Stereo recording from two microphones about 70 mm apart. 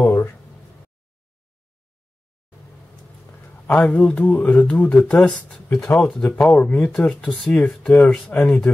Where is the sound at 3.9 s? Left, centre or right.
Centre.